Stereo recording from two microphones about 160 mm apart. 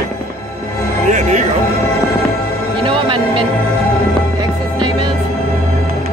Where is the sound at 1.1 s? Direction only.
50° right (ahead or behind).